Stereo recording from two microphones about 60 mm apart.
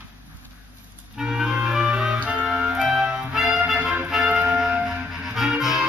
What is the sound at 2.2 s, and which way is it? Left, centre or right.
Music, right.